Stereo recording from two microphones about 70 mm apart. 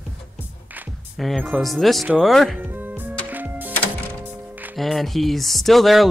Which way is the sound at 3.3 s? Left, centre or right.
Right.